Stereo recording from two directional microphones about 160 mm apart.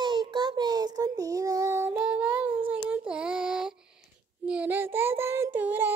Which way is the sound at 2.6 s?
10° right (ahead or behind).